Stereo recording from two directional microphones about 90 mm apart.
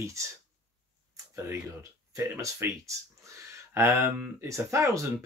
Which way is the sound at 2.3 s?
30° right (ahead or behind).